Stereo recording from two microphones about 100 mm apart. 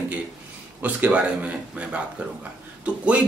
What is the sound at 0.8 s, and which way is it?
A man's voice, 15° right (ahead or behind).